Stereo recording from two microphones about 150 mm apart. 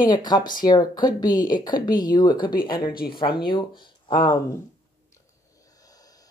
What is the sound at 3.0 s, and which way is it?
Speech, 90° left.